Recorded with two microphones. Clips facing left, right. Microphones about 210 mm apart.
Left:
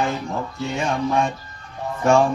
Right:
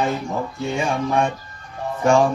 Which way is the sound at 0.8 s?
10° right (ahead or behind).